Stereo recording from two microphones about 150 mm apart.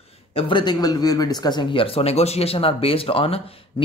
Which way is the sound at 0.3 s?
35° left (ahead or behind).